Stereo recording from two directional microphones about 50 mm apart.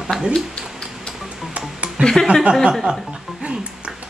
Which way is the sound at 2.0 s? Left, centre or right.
Right.